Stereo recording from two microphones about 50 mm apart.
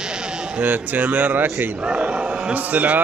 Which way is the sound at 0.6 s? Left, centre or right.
Right.